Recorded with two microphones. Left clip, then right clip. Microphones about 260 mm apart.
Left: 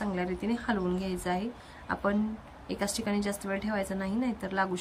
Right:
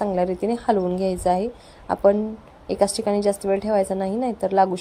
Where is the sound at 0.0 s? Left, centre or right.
Centre.